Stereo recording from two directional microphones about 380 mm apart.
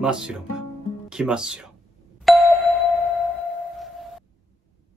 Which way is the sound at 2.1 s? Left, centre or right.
Centre.